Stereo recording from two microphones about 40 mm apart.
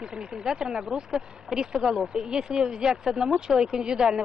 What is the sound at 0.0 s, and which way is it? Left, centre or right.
Speech, centre.